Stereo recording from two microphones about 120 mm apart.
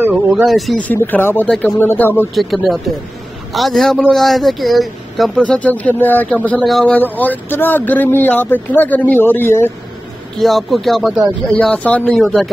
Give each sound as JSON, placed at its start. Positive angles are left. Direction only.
{"t": 0.3, "sound": "speech", "side_deg": 0}
{"t": 0.7, "sound": "speech", "side_deg": 15}
{"t": 2.3, "sound": "speech", "side_deg": 0}
{"t": 6.6, "sound": "speech", "side_deg": 0}
{"t": 6.9, "sound": "speech", "side_deg": 15}
{"t": 10.4, "sound": "speech", "side_deg": 0}
{"t": 11.5, "sound": "speech", "side_deg": 10}